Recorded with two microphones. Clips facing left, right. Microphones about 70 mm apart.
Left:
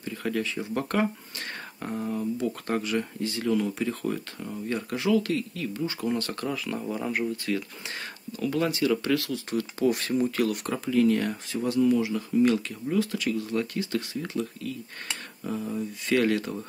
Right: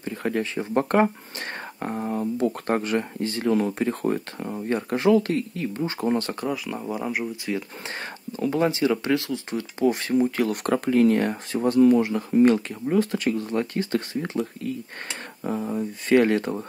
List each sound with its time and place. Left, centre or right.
0.0 s speech: right
6.4 s speech: centre
7.9 s speech: right
10.5 s speech: right
12.4 s speech: right
16.2 s speech: right